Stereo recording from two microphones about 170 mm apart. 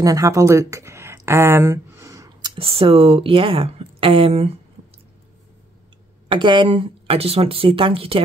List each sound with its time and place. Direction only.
0.0 s speech: 20° right (ahead or behind); by 4.6 s 35° right (ahead or behind)
6.2 s speech: 30° right (ahead or behind)